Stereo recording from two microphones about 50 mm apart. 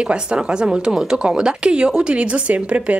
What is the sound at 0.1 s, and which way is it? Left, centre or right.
Speech, centre.